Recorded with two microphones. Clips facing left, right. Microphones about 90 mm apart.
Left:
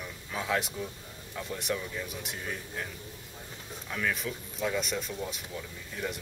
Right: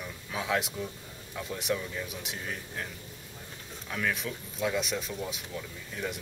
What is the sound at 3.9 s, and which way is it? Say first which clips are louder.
Speech: even; centre (ahead or behind).